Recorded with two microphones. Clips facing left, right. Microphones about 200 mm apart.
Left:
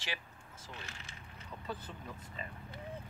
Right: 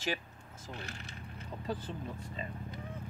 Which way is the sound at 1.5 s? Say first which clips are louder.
Right 5 dB; 30° right (ahead or behind).